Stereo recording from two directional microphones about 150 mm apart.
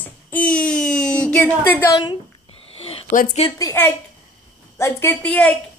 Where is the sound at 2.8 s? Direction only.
40° left (ahead or behind).